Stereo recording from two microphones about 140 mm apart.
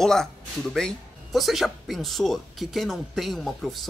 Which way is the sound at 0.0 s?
5° left (ahead or behind).